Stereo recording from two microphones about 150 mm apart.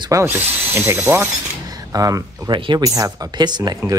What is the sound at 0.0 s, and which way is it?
Speech, 20° right (ahead or behind).